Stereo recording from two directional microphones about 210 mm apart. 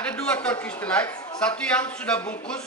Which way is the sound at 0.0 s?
5° left (ahead or behind).